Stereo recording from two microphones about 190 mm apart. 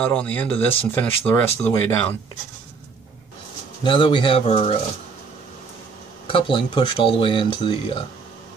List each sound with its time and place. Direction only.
0.0 s speech: 5° left (ahead or behind)
3.8 s speech: 25° left (ahead or behind)
6.2 s speech: 25° left (ahead or behind)